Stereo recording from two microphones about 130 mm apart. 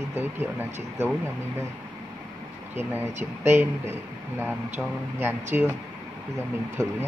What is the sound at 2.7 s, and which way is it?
Speech, 15° right (ahead or behind).